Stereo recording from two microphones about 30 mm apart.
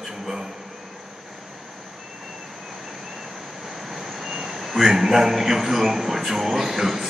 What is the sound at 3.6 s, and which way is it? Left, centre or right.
A man's voice, centre.